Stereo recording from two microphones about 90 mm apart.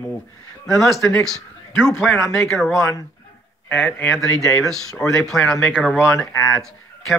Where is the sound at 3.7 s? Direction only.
25° left (ahead or behind).